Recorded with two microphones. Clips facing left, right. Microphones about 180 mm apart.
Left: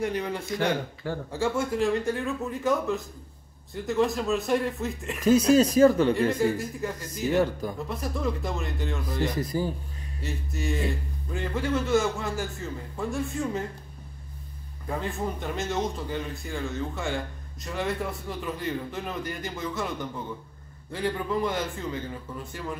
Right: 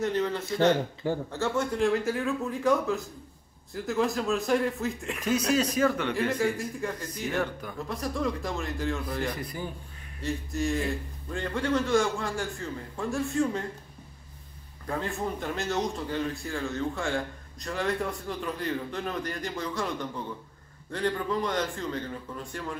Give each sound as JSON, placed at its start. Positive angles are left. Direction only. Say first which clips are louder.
{"t": 0.0, "sound": "a man's voice", "louder": "right 1 dB", "side_deg": 10}
{"t": 5.5, "sound": "speech", "louder": "left 6 dB", "side_deg": 35}
{"t": 6.1, "sound": "a man's voice", "louder": "left 3 dB", "side_deg": 0}
{"t": 9.4, "sound": "speech", "louder": "left 8 dB", "side_deg": 40}
{"t": 10.2, "sound": "a man's voice", "louder": "right 3 dB", "side_deg": 0}
{"t": 14.9, "sound": "a man's voice", "louder": "even", "side_deg": 0}